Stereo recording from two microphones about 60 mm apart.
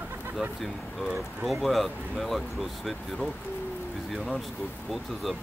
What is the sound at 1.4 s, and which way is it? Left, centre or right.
Speech, centre.